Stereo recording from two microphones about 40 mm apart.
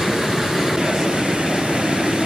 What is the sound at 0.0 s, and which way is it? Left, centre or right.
Train, centre.